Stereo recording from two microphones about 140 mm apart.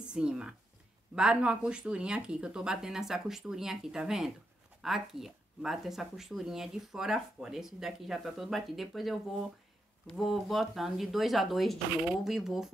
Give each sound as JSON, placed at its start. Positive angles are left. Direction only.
{"t": 0.1, "sound": "speech", "side_deg": -5}